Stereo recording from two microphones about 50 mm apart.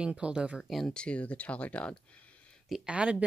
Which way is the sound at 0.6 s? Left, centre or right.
Centre.